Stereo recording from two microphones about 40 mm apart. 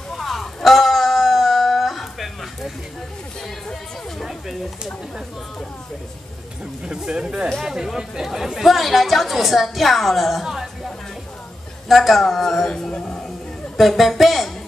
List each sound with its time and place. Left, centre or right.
0.1 s a sound: centre
4.2 s a sound: centre
6.9 s speech: centre
11.9 s speech: centre
12.6 s speech: centre
13.7 s speech: centre